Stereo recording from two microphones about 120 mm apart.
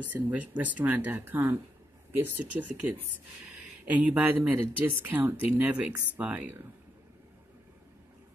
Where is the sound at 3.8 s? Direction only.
10° right (ahead or behind).